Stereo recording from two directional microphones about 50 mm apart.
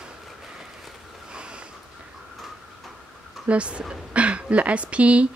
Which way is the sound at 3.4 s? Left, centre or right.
Right.